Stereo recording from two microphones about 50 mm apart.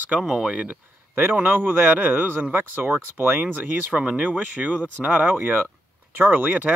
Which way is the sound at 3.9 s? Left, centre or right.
Right.